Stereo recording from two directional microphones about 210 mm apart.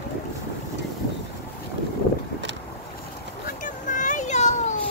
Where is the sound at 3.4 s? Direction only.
40° left (ahead or behind).